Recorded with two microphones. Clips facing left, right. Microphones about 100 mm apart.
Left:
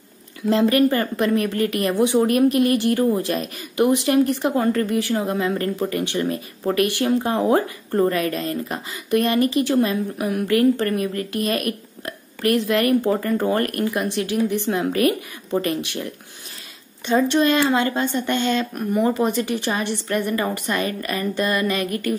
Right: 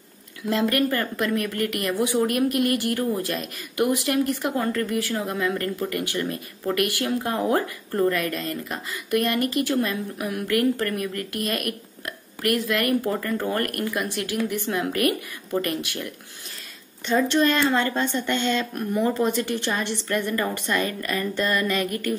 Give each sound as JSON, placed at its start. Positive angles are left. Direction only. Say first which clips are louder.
{"t": 0.5, "sound": "speech", "louder": "left 5 dB", "side_deg": 25}